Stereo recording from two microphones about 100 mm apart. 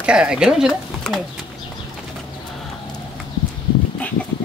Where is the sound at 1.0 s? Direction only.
5° left (ahead or behind).